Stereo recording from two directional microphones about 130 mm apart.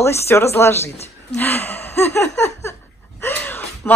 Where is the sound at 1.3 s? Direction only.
15° left (ahead or behind).